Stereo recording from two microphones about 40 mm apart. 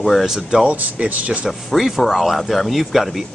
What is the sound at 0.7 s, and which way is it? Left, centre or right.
Speech, right.